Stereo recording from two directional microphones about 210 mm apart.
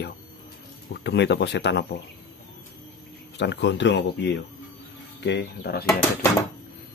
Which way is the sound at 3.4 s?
55° left (ahead or behind).